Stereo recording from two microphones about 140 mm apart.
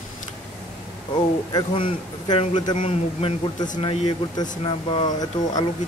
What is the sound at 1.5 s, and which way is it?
A man's voice, 35° left (ahead or behind).